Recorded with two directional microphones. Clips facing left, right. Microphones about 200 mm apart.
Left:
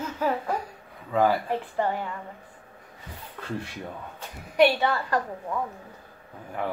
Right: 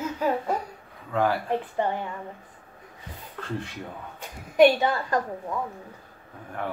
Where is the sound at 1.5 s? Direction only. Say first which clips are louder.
Right 1 dB; 20° right (ahead or behind).